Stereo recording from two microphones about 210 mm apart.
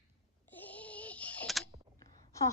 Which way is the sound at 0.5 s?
10° left (ahead or behind).